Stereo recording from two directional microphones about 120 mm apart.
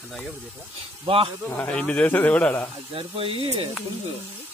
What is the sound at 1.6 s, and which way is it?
A man's voice, 10° left (ahead or behind).